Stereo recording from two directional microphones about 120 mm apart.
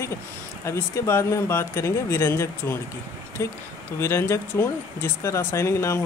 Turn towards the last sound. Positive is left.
turn(degrees=25)  # may be behind; listen again after turning